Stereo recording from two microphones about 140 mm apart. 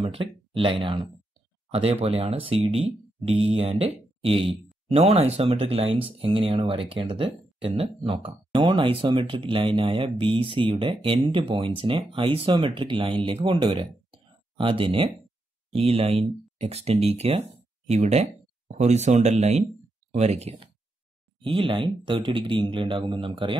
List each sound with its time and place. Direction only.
0.0 s speech: 40° right (ahead or behind)